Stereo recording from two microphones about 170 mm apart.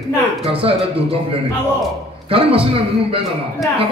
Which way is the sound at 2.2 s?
35° right (ahead or behind).